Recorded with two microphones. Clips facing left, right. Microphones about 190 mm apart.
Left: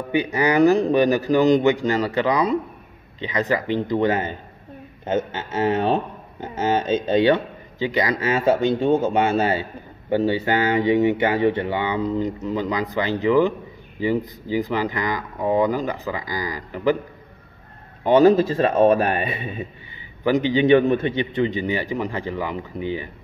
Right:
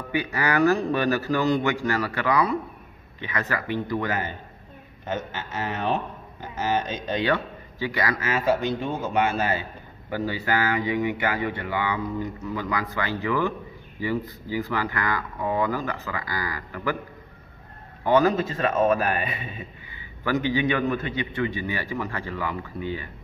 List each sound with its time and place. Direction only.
0.1 s a man's voice: 20° left (ahead or behind)
18.0 s a man's voice: 25° left (ahead or behind)